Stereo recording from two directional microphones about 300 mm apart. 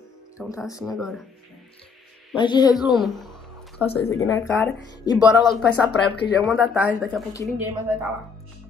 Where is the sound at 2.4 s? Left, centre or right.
Centre.